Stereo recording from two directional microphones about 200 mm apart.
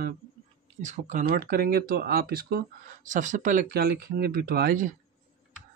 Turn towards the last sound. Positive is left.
turn(degrees=-50)  # may be behind; listen again after turning